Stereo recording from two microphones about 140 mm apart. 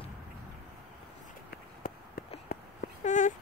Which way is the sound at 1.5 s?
90° left.